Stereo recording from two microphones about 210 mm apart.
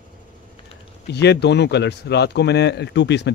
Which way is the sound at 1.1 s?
50° left (ahead or behind).